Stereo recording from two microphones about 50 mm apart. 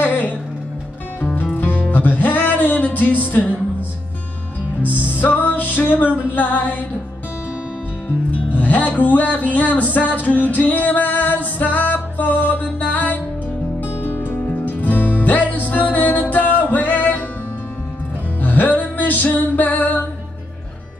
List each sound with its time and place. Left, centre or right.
0.0 s music: left
1.3 s music: left
5.1 s music: left
8.5 s music: left
14.0 s music: left
18.4 s music: left